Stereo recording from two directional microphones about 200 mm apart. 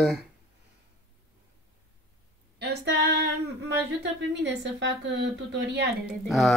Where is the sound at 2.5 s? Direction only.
55° right (ahead or behind).